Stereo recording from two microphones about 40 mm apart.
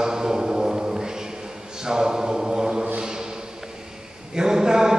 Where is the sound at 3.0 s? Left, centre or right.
Centre.